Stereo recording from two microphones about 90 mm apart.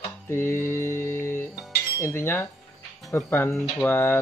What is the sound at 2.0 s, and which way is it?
Speech, 30° left (ahead or behind).